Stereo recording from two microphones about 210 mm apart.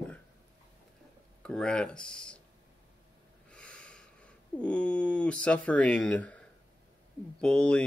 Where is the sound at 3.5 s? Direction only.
5° left (ahead or behind).